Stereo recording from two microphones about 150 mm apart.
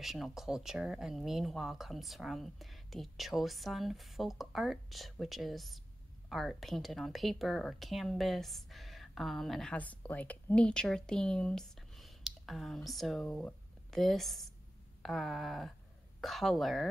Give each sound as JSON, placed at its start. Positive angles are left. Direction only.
{"t": 0.0, "sound": "speech", "side_deg": 0}